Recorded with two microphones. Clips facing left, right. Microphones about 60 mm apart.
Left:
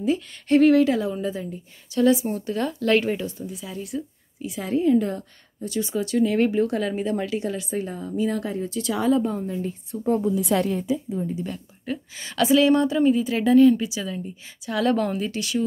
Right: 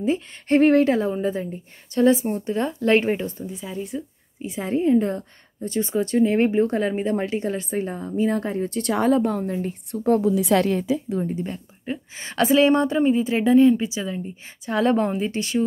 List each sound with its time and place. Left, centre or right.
0.0 s speech: right
2.4 s a woman's voice: right
11.2 s a woman's voice: right